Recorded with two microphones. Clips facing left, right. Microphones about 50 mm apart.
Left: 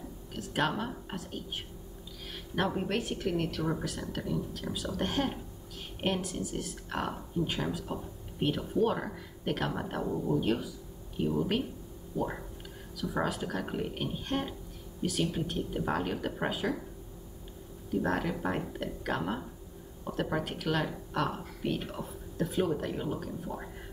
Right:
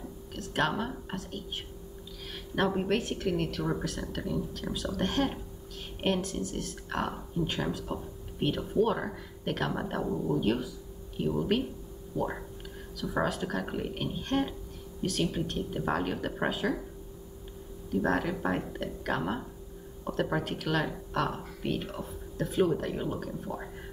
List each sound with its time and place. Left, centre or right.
0.3 s a sound: centre
1.1 s speech: centre
2.2 s a sound: centre
3.0 s speech: centre
12.1 s speech: centre
18.0 s speech: centre